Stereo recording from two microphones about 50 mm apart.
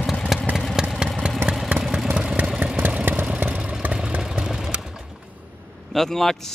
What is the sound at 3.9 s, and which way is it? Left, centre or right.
Vehicle, centre.